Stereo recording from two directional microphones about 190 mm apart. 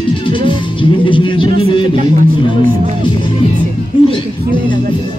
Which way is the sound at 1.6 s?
25° left (ahead or behind).